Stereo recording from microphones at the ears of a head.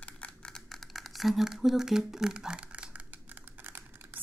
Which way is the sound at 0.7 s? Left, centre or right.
Centre.